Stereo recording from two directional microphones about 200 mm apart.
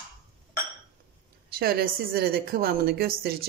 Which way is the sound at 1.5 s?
50° right (ahead or behind).